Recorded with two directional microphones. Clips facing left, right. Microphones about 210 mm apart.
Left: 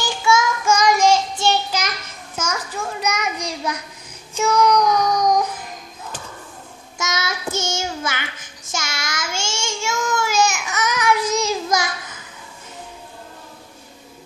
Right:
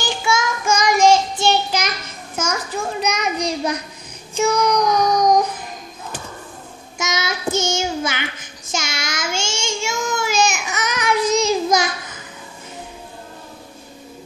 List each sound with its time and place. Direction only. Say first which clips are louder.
0.0 s child singing: left 2 dB; 15° right (ahead or behind)
2.4 s a sound: right 3 dB; 15° right (ahead or behind)
4.4 s child singing: even; 15° right (ahead or behind)
7.0 s child singing: right 2 dB; 15° right (ahead or behind)